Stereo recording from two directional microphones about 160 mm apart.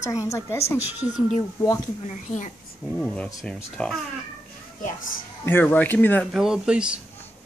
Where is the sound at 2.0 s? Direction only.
45° left (ahead or behind).